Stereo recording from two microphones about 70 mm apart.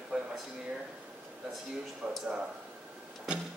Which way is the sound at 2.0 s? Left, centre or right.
Centre.